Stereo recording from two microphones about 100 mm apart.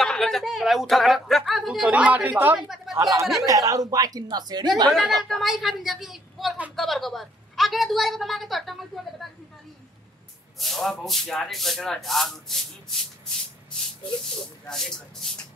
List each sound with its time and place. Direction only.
0.0 s a woman's voice: 5° left (ahead or behind)
1.8 s a woman's voice: 15° right (ahead or behind)
2.7 s a sound: 5° right (ahead or behind)
3.0 s a woman's voice: 35° right (ahead or behind)
4.9 s a woman's voice: centre (ahead or behind)
10.6 s a woman's voice: centre (ahead or behind)
14.7 s a woman's voice: 5° left (ahead or behind)